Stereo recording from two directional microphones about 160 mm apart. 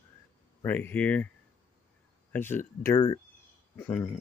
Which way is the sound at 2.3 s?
15° left (ahead or behind).